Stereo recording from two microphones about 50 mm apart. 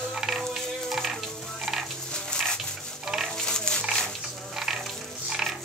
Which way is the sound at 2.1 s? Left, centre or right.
Centre.